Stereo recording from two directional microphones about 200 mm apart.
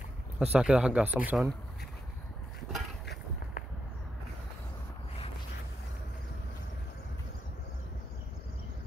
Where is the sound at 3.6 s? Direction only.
40° left (ahead or behind).